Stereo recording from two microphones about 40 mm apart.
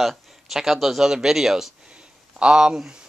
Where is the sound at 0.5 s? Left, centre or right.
Centre.